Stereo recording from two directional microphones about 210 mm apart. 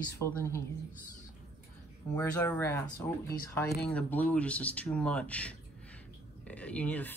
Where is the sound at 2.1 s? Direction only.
10° left (ahead or behind).